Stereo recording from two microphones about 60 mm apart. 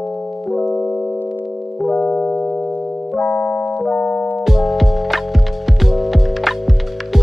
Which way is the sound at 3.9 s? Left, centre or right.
Left.